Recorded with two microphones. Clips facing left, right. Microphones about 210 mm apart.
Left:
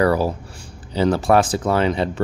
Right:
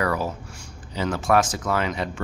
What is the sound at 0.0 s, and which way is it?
Speech, 35° left (ahead or behind).